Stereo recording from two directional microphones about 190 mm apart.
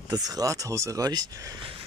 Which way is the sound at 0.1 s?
20° right (ahead or behind).